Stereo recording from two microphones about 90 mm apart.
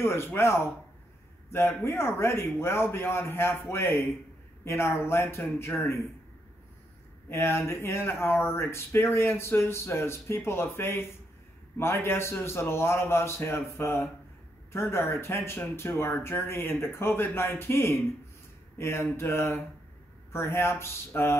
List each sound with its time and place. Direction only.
0.0 s speech: 25° left (ahead or behind)
7.2 s speech: 25° left (ahead or behind)